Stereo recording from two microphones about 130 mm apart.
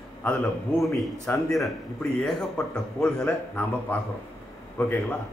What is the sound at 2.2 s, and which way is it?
A man's voice, 5° left (ahead or behind).